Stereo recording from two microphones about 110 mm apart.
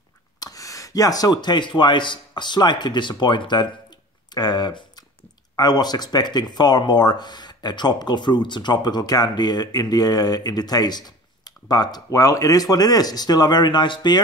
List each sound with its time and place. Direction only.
0.4 s speech: 30° left (ahead or behind)